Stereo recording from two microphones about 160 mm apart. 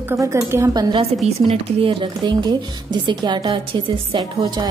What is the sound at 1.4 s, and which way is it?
Speech, 40° right (ahead or behind).